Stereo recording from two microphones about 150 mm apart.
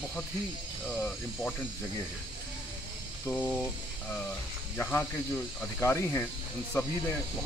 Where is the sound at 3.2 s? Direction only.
10° left (ahead or behind).